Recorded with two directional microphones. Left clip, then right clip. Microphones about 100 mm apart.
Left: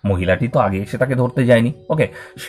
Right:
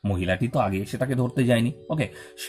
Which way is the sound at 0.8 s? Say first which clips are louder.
Left 9 dB; 35° right (ahead or behind).